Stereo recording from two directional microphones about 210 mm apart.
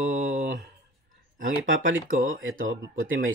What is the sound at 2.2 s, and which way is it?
Speech, 75° right (ahead or behind).